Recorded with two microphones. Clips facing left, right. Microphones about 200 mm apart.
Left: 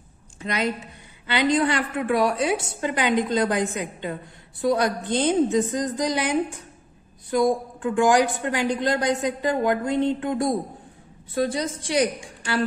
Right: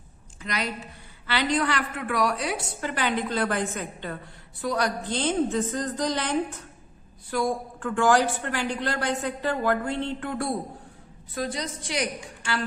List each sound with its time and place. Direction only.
0.4 s a woman's voice: 25° left (ahead or behind)